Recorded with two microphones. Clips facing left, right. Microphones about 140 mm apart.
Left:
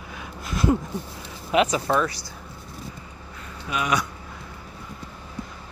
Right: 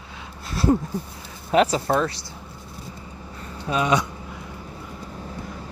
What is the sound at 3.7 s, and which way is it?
Speech, 25° right (ahead or behind).